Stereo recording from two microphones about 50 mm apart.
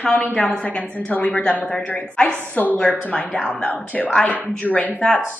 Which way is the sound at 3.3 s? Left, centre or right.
Left.